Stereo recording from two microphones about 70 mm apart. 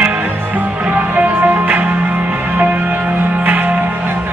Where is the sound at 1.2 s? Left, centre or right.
Right.